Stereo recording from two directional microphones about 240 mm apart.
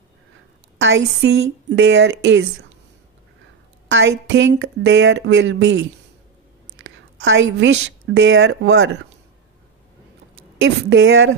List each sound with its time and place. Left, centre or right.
0.7 s speech: right
3.9 s a woman's voice: right
10.6 s speech: right